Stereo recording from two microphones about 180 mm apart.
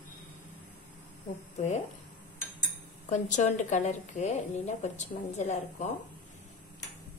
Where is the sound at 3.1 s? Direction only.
45° left (ahead or behind).